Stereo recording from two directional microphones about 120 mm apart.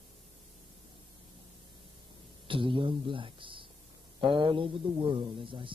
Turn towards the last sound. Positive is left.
turn(degrees=-45)  # may be behind; listen again after turning